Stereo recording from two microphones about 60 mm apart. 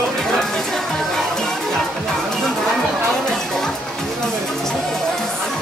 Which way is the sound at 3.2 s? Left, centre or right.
Centre.